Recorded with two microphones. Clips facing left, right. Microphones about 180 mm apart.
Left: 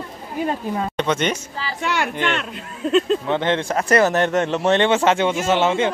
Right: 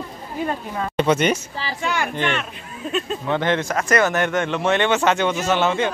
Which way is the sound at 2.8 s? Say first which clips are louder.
Left 7 dB; 75° left (ahead or behind).